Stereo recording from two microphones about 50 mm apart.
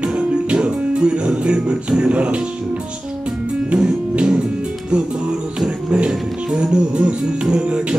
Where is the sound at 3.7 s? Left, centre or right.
Right.